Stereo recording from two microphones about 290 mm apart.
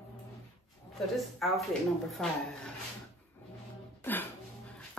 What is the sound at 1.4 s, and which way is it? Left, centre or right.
Speech, centre.